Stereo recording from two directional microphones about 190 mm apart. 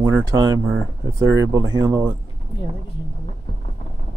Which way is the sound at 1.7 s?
15° right (ahead or behind).